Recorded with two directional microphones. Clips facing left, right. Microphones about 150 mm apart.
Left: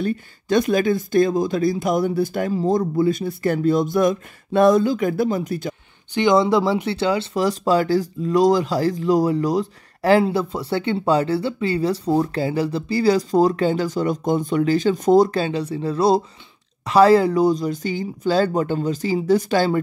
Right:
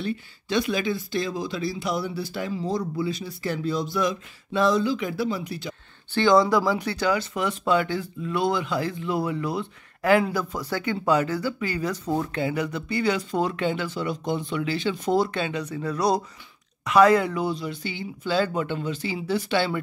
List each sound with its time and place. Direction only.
0.0 s speech: 45° left (ahead or behind)
6.1 s speech: 20° left (ahead or behind); by 19.8 s 40° left (ahead or behind)